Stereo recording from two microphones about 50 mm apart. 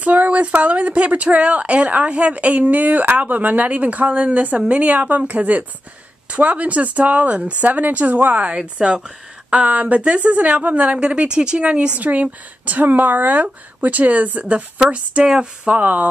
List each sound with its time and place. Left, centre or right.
0.0 s a sound: right
0.6 s a woman's voice: right
15.2 s speech: centre
15.7 s speech: right